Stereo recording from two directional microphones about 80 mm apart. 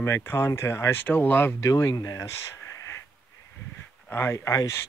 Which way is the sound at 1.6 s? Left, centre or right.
Left.